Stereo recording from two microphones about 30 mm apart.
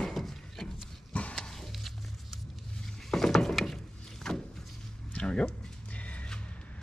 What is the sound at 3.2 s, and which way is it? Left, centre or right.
Wood, centre.